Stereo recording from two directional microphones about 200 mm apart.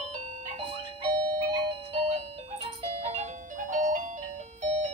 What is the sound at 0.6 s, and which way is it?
Music, 25° right (ahead or behind).